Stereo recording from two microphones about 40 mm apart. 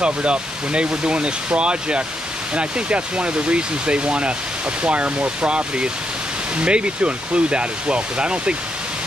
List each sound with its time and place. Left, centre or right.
0.0 s speech: right